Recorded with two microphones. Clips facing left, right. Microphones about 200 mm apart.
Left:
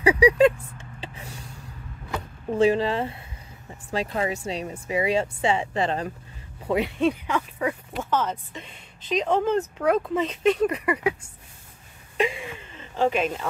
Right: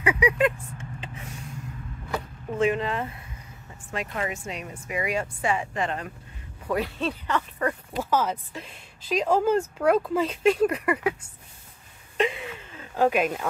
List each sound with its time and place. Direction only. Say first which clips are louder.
0.0 s vehicle: left 6 dB; 35° left (ahead or behind)
2.5 s speech: left 4 dB; 30° left (ahead or behind)
6.7 s speech: left 5 dB; 15° left (ahead or behind)
8.0 s speech: right 1 dB; 10° right (ahead or behind)
12.2 s a sound: even; centre (ahead or behind)